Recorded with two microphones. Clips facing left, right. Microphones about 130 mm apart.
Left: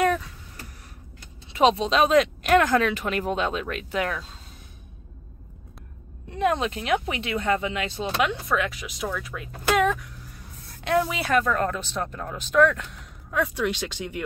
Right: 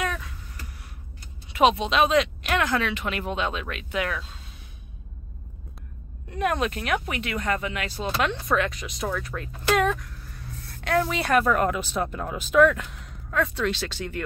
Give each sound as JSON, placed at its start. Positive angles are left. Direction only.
{"t": 1.5, "sound": "speech", "side_deg": 30}
{"t": 6.3, "sound": "speech", "side_deg": 25}
{"t": 8.5, "sound": "speech", "side_deg": 5}
{"t": 10.8, "sound": "a sound", "side_deg": 20}
{"t": 11.1, "sound": "speech", "side_deg": 5}
{"t": 11.3, "sound": "speech", "side_deg": -10}
{"t": 13.3, "sound": "speech", "side_deg": 15}